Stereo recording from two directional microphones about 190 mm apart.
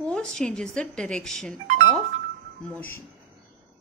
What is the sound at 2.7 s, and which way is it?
Speech, 10° left (ahead or behind).